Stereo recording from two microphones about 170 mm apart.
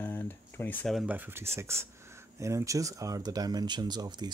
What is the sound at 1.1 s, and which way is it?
Speech, 10° right (ahead or behind).